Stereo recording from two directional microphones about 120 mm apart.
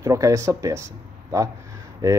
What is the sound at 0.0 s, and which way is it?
Speech, 25° right (ahead or behind).